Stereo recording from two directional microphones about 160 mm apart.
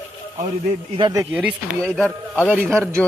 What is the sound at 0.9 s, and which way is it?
Speech, 30° right (ahead or behind).